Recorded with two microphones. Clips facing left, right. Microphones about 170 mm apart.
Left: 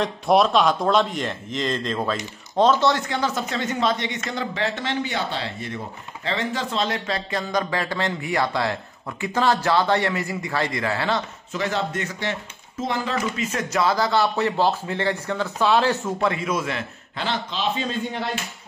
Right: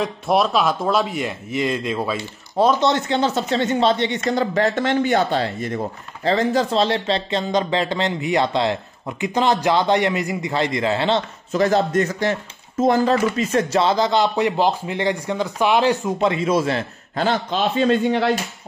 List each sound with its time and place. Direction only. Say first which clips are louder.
0.0 s a man's voice: left 1 dB; centre (ahead or behind); by 11.2 s 25° right (ahead or behind)
11.5 s speech: right 8 dB; 40° right (ahead or behind); by 18.3 s 75° right (ahead or behind)